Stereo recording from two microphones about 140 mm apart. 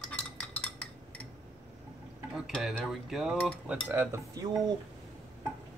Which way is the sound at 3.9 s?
15° right (ahead or behind).